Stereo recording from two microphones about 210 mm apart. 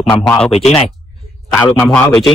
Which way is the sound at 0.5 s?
30° left (ahead or behind).